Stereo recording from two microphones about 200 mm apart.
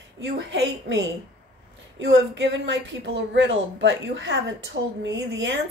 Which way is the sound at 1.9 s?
65° right (ahead or behind).